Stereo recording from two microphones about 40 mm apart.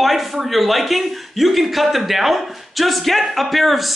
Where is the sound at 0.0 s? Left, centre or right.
Centre.